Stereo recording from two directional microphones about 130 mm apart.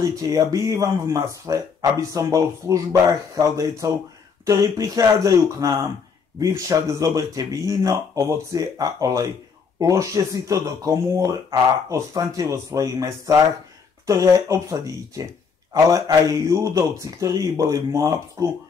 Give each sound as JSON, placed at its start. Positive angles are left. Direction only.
{"t": 0.0, "sound": "speech", "side_deg": -25}